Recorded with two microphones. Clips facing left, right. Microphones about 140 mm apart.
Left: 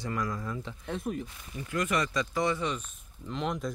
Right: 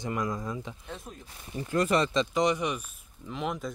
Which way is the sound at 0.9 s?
70° left (ahead or behind).